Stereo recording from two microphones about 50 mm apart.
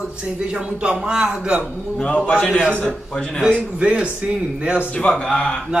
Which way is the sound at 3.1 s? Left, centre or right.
Centre.